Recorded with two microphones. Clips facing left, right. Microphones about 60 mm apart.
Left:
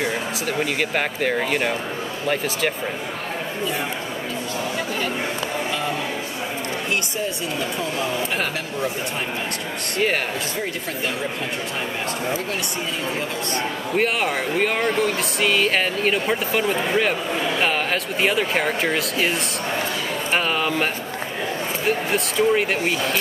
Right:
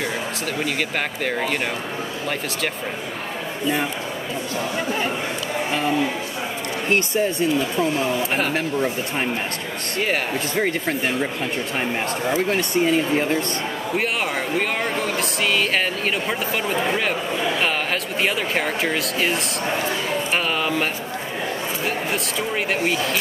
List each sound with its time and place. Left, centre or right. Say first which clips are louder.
0.0 s speech: left 1 dB; centre
6.9 s speech: right 8 dB; right
12.3 s speech: right 4 dB; right
13.9 s speech: left 3 dB; centre